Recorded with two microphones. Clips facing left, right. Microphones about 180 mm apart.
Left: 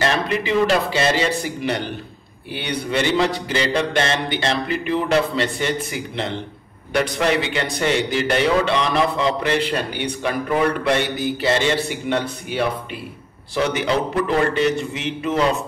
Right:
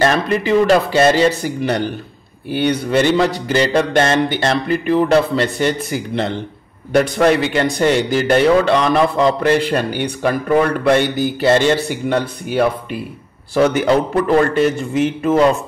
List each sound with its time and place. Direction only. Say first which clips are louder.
0.0 s mantra: right 5 dB; 45° right (ahead or behind)
12.1 s mantra: right 5 dB; 45° right (ahead or behind)